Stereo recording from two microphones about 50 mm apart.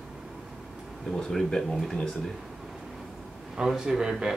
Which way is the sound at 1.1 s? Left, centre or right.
Centre.